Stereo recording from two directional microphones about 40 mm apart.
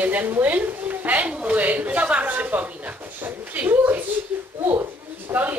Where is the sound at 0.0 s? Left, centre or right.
Right.